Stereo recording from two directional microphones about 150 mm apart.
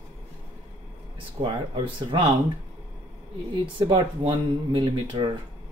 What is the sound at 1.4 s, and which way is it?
Speech, 35° right (ahead or behind).